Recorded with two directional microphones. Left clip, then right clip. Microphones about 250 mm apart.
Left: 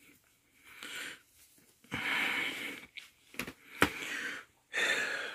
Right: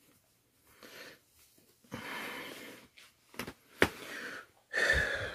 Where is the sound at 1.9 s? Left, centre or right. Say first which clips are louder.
Left 9 dB; centre.